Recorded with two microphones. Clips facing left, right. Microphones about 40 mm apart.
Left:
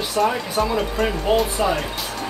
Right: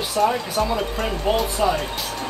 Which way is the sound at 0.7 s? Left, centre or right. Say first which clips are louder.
Left 2 dB; centre.